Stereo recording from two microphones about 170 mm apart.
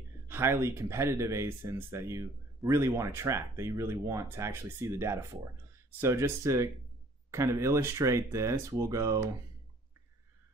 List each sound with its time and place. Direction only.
0.3 s speech: 15° right (ahead or behind)